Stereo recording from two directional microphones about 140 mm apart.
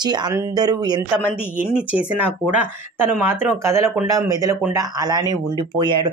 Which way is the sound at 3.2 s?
15° right (ahead or behind).